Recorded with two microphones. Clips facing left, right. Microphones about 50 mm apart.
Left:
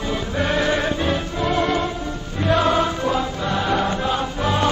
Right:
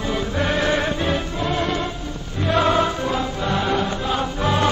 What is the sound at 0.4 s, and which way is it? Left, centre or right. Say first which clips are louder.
Music: left 1 dB; left.